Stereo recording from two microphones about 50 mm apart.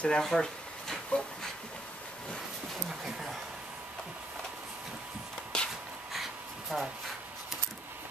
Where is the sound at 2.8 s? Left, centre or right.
Centre.